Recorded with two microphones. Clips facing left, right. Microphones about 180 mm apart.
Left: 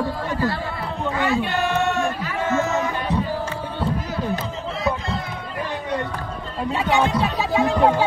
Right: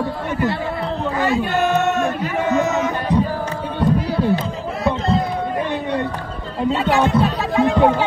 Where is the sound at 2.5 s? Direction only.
20° right (ahead or behind).